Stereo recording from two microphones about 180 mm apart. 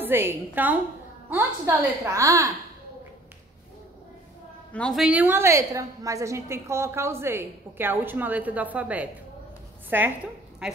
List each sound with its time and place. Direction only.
0.0 s a woman's voice: 10° right (ahead or behind)
4.7 s a woman's voice: centre (ahead or behind)